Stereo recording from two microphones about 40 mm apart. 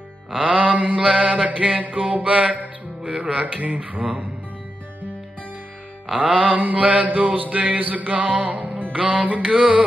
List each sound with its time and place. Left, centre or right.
0.4 s music: right
6.5 s music: right
8.9 s music: right